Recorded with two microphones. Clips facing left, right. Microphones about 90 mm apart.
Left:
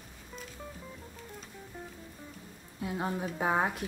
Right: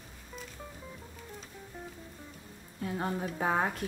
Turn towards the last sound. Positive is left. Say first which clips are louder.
# left 1 dB
turn(degrees=10)  # may be behind; listen again after turning